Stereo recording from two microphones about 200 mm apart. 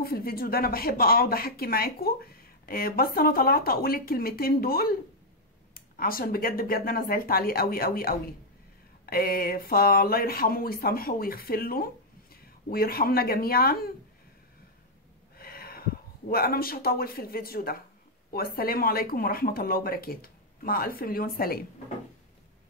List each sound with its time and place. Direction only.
0.0 s speech: 50° left (ahead or behind)
15.3 s speech: 50° left (ahead or behind)